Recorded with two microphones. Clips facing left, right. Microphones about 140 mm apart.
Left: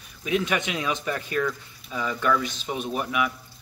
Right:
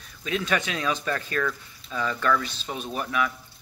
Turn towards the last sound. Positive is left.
turn(degrees=10)  # may be behind; listen again after turning